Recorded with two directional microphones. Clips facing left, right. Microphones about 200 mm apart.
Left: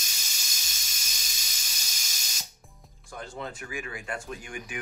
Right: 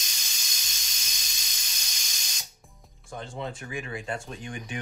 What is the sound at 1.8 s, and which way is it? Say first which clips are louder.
Spray: even; 5° left (ahead or behind).